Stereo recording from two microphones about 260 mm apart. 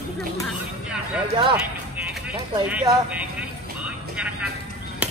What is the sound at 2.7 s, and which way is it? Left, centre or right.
Speech, centre.